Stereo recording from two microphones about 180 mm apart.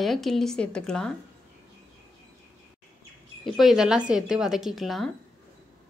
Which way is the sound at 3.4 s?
Centre (ahead or behind).